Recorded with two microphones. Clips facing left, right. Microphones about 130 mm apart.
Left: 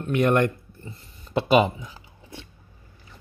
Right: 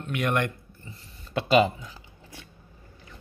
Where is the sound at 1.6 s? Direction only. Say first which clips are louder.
Left 1 dB; 20° left (ahead or behind).